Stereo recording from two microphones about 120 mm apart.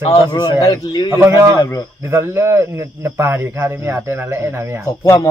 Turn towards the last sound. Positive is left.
turn(degrees=25)  # may be behind; listen again after turning